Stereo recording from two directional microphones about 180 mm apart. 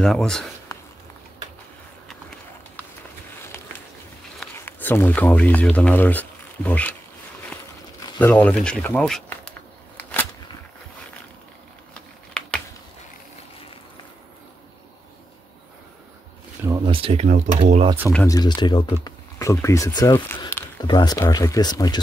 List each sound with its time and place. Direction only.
0.0 s speech: 5° left (ahead or behind)
0.7 s a sound: 20° left (ahead or behind)
4.4 s speech: 10° left (ahead or behind)
8.2 s speech: 10° left (ahead or behind)
11.9 s a sound: 5° left (ahead or behind)
16.6 s speech: 25° right (ahead or behind)
18.2 s speech: 20° left (ahead or behind)